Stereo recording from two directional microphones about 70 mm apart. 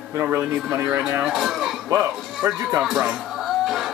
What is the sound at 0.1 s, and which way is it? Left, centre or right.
Speech, right.